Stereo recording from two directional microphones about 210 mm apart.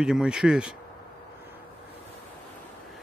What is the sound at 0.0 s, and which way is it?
Speech, 5° right (ahead or behind).